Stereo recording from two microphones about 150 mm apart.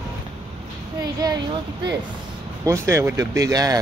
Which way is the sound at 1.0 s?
25° right (ahead or behind).